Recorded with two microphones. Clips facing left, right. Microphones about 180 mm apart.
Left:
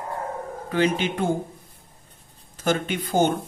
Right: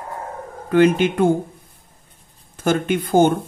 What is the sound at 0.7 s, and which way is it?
Speech, 50° right (ahead or behind).